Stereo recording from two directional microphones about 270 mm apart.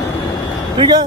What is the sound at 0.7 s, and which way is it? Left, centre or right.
Speech, centre.